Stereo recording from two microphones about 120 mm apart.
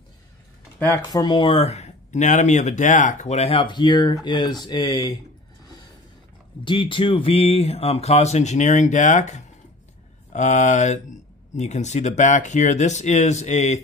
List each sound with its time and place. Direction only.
0.7 s speech: 25° left (ahead or behind)
1.3 s speech: 45° left (ahead or behind)
6.6 s speech: 45° left (ahead or behind); by 9.5 s 75° left (ahead or behind)
10.3 s speech: 90° left
11.5 s speech: 75° left (ahead or behind)